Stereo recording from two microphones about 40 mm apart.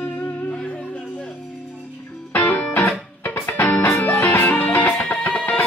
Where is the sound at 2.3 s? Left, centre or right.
Left.